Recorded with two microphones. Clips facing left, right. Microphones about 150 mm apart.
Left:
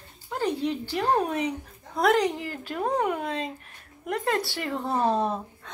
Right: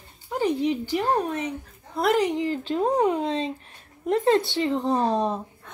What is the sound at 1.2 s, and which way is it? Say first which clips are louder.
Speech: left 1 dB; 10° left (ahead or behind).